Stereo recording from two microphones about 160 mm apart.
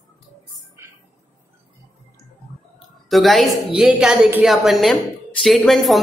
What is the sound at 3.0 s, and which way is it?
A woman's voice, centre (ahead or behind).